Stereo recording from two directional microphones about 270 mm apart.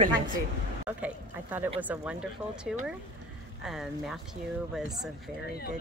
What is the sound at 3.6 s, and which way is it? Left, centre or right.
Speech, centre.